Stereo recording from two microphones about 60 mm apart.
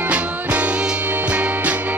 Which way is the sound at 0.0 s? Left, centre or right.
Right.